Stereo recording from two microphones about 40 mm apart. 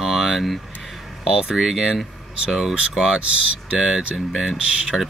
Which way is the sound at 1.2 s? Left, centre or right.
Centre.